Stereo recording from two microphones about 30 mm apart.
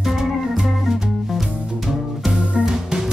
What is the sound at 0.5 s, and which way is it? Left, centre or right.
Music, centre.